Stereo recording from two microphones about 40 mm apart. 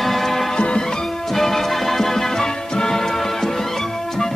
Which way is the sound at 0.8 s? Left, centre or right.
Centre.